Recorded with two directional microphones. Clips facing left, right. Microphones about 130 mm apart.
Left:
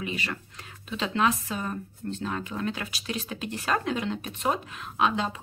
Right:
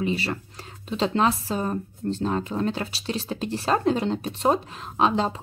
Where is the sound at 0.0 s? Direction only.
35° right (ahead or behind).